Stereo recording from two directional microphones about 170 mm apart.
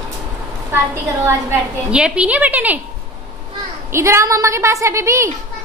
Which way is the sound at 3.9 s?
15° right (ahead or behind).